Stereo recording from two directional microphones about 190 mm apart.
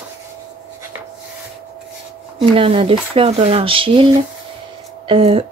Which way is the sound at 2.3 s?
25° right (ahead or behind).